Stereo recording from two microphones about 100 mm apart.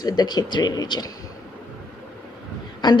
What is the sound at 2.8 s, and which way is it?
Speech, 45° left (ahead or behind).